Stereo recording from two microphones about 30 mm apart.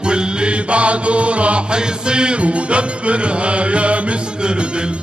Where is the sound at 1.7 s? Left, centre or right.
Right.